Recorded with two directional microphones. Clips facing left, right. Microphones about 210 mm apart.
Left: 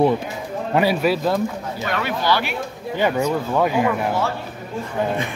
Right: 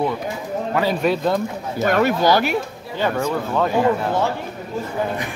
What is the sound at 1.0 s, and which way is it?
Speech, 5° left (ahead or behind).